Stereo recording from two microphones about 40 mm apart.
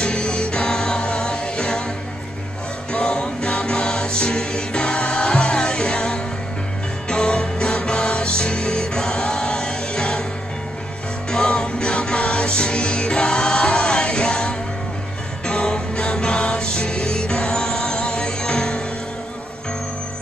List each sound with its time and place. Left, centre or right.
0.0 s music: left
2.9 s music: left
11.2 s music: left